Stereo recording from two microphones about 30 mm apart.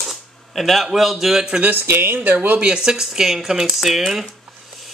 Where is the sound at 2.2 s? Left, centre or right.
Right.